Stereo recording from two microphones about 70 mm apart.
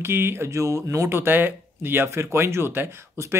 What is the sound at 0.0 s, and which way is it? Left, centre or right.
Speech, right.